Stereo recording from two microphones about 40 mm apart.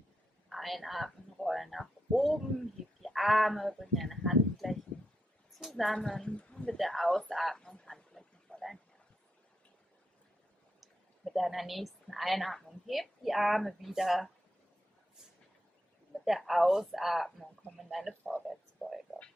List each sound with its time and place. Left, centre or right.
0.5 s speech: centre
3.9 s a sound: centre
5.6 s a woman's voice: centre
6.2 s speech: left
6.8 s speech: centre
7.5 s a sound: centre
8.5 s a sound: left
11.2 s a woman's voice: centre
16.3 s speech: centre